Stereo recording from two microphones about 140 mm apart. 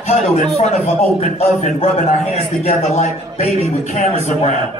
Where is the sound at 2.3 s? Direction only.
50° left (ahead or behind).